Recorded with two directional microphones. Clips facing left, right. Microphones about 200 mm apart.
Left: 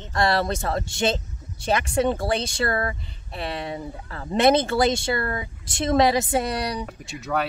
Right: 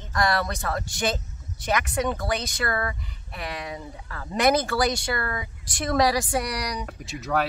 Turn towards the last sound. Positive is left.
turn(degrees=0)  # may be behind; listen again after turning